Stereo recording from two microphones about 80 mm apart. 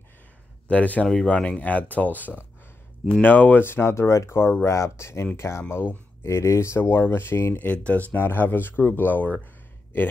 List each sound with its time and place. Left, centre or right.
0.7 s speech: centre